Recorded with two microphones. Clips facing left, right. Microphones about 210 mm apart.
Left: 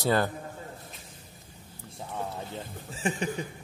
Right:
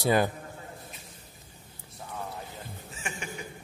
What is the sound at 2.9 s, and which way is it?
Chuckle, 35° left (ahead or behind).